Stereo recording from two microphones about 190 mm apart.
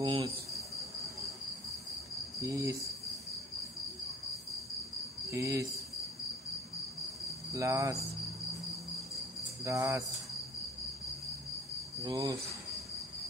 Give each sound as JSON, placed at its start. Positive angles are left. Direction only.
{"t": 0.0, "sound": "cricket", "side_deg": -25}
{"t": 2.4, "sound": "cricket", "side_deg": -20}
{"t": 5.3, "sound": "cricket", "side_deg": -15}
{"t": 7.5, "sound": "cricket", "side_deg": -15}
{"t": 9.6, "sound": "cricket", "side_deg": -15}
{"t": 12.0, "sound": "cricket", "side_deg": -20}